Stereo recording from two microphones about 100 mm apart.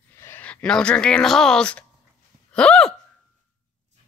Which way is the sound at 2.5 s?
10° left (ahead or behind).